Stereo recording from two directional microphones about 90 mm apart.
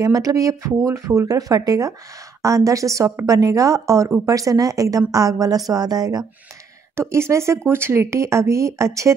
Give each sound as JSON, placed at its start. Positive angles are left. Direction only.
{"t": 0.0, "sound": "a woman's voice", "side_deg": -40}
{"t": 7.0, "sound": "a woman's voice", "side_deg": -30}